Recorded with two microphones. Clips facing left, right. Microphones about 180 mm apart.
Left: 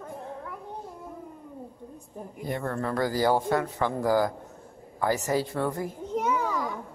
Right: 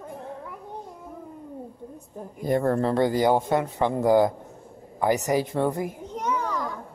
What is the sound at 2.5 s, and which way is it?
Speech, 40° right (ahead or behind).